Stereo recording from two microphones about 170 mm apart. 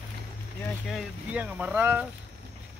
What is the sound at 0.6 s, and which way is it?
Speech, centre (ahead or behind).